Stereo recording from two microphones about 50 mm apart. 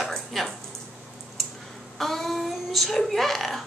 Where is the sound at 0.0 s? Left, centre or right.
Centre.